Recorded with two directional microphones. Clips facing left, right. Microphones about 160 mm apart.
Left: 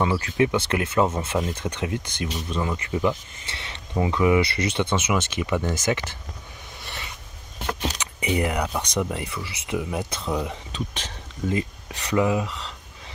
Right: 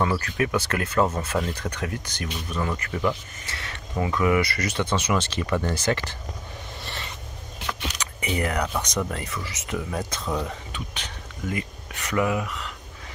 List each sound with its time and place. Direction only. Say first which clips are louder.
0.0 s speech: left 3 dB; 15° left (ahead or behind)
7.8 s vehicle: left 4 dB; 30° left (ahead or behind)
8.2 s speech: left 2 dB; 20° left (ahead or behind)
10.7 s speech: left 4 dB; 30° left (ahead or behind)